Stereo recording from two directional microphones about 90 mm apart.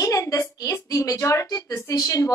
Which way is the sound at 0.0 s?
35° left (ahead or behind).